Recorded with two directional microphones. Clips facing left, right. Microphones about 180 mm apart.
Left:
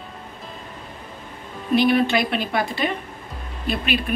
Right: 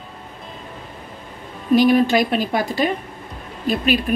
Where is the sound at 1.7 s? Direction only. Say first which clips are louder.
Right 3 dB; 40° right (ahead or behind).